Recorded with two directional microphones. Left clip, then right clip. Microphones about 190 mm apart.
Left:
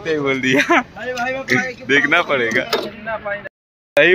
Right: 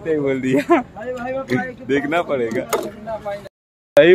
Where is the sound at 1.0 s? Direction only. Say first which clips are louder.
Left 3 dB; 25° right (ahead or behind).